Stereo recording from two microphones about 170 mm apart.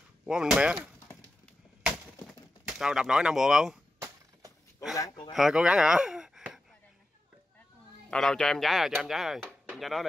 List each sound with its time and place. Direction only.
0.3 s speech: 5° right (ahead or behind)
2.6 s speech: 5° right (ahead or behind)
4.9 s speech: 20° left (ahead or behind)
5.3 s speech: 5° right (ahead or behind)
8.1 s speech: 5° left (ahead or behind)